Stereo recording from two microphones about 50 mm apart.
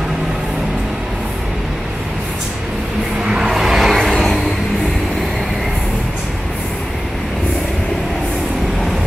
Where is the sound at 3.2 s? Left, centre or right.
Centre.